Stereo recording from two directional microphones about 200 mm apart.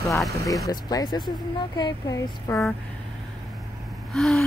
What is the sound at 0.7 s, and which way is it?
Speech, 20° left (ahead or behind).